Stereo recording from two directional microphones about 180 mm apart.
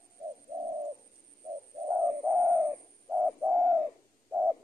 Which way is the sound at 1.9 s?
10° right (ahead or behind).